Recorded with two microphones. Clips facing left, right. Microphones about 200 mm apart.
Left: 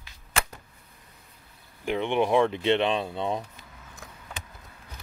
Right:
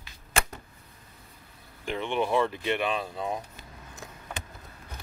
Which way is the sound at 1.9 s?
20° left (ahead or behind).